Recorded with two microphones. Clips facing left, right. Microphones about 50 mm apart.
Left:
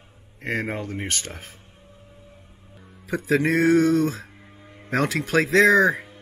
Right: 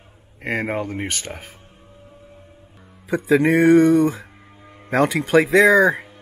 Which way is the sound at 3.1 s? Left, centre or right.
Centre.